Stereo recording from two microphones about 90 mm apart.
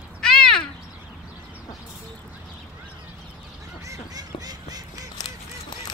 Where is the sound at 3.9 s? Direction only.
45° right (ahead or behind).